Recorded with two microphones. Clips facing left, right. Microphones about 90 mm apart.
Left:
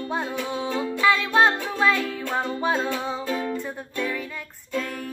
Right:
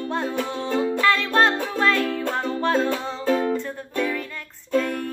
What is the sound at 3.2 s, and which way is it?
Music, 45° right (ahead or behind).